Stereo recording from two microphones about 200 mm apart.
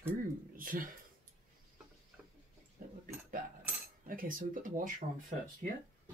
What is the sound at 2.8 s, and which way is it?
Cutlery, 45° right (ahead or behind).